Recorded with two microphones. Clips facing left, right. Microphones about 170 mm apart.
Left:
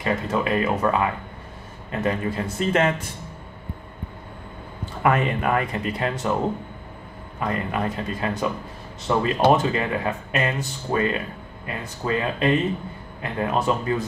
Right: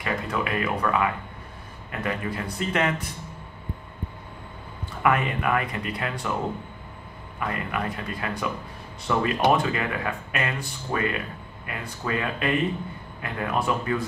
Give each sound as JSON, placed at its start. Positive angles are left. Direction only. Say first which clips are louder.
{"t": 0.0, "sound": "speech", "louder": "left 4 dB", "side_deg": 30}
{"t": 5.0, "sound": "speech", "louder": "left 2 dB", "side_deg": 30}
{"t": 7.3, "sound": "speech", "louder": "left 4 dB", "side_deg": 30}